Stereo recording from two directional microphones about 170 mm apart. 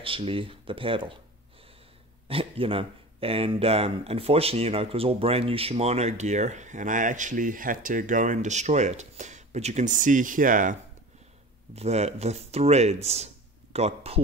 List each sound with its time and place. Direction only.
0.0 s speech: 30° right (ahead or behind)
2.2 s speech: 35° right (ahead or behind); by 10.8 s 50° right (ahead or behind)
11.7 s speech: 40° right (ahead or behind)